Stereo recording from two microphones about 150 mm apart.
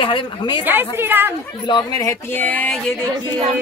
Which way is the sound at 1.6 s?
30° left (ahead or behind).